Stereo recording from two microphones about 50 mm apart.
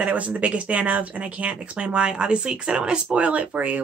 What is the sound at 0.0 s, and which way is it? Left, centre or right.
Speech, right.